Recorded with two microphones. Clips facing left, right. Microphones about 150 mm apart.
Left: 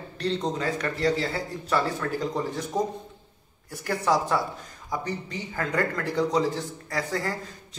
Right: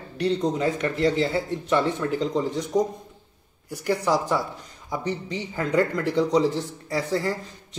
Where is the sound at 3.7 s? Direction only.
20° right (ahead or behind).